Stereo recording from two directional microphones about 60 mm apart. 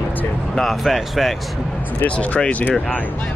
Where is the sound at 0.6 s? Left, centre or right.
Centre.